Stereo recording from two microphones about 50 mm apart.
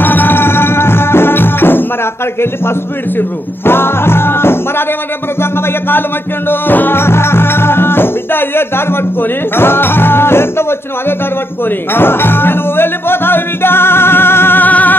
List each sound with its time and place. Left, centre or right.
0.0 s music: left
3.2 s music: left
14.6 s music: left